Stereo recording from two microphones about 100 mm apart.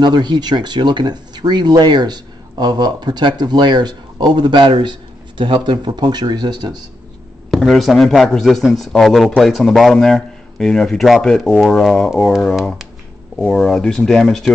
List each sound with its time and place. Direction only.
0.0 s speech: 45° right (ahead or behind)
7.5 s a man's voice: centre (ahead or behind)